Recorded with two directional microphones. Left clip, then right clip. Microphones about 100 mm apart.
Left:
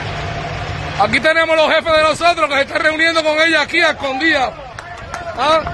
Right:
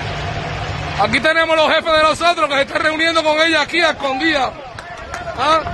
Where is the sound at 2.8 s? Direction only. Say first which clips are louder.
Left 2 dB; 30° right (ahead or behind).